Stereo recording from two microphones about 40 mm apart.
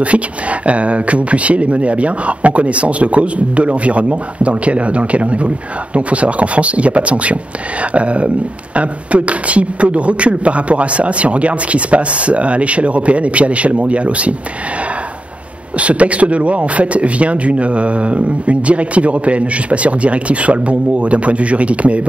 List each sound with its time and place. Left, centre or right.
0.0 s speech: right
15.8 s speech: right